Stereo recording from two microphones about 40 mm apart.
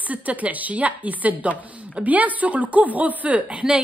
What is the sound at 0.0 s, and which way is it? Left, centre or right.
A woman's voice, right.